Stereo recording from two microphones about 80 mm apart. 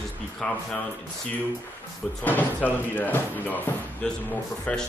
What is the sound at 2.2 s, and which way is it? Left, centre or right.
Speech, left.